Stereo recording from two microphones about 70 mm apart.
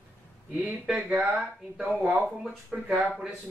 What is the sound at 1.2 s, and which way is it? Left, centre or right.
Speech, centre.